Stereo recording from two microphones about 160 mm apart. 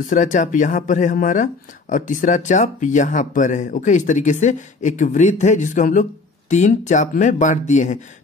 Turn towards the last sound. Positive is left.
turn(degrees=50)  # may be behind; listen again after turning